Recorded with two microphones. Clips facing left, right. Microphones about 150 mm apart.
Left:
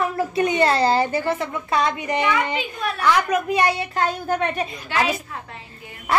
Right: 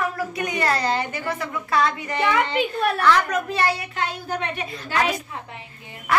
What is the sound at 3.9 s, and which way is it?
Speech, 45° left (ahead or behind).